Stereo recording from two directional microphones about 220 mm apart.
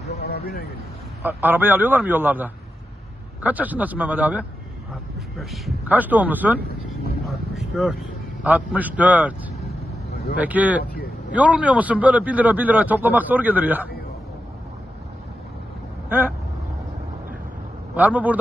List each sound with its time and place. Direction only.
0.2 s vehicle: 45° left (ahead or behind)
1.2 s a man's voice: 10° right (ahead or behind)
7.2 s vehicle: centre (ahead or behind)
8.5 s a man's voice: 5° right (ahead or behind)
10.3 s a man's voice: 5° right (ahead or behind)
10.8 s vehicle: 45° left (ahead or behind)
11.3 s a man's voice: 5° right (ahead or behind)
16.1 s a man's voice: 10° right (ahead or behind)
17.9 s a man's voice: 5° right (ahead or behind)